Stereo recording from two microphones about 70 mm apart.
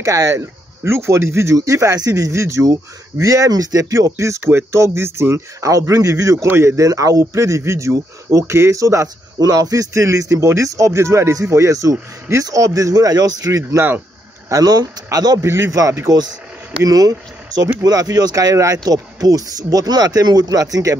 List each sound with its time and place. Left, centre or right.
0.0 s speech: right
5.7 s speech: right
6.3 s speech: right
6.8 s speech: right
13.5 s speech: right
14.5 s speech: right
15.4 s speech: right
16.1 s speech: right
16.8 s speech: right